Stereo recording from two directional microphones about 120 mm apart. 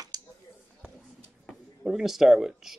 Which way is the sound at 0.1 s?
30° right (ahead or behind).